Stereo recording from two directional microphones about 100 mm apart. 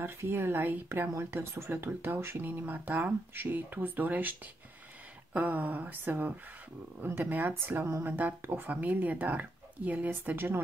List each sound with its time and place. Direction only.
0.0 s speech: 25° right (ahead or behind)